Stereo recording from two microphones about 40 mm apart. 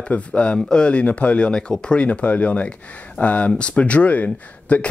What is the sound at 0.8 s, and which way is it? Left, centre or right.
Speech, left.